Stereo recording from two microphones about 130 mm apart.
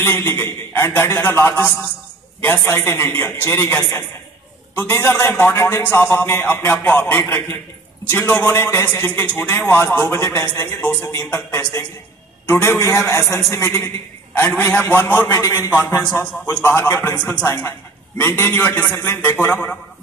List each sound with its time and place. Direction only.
0.0 s a man's voice: 15° left (ahead or behind)